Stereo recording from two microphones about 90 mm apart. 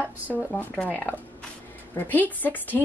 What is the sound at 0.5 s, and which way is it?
A woman's voice, 15° left (ahead or behind).